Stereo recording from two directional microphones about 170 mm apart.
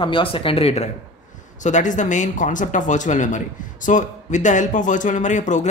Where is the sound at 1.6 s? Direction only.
45° left (ahead or behind).